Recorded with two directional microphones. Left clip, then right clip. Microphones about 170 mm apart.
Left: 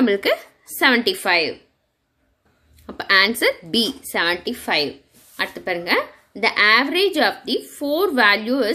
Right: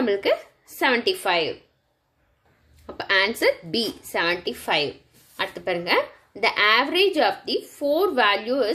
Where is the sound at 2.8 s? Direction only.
20° left (ahead or behind).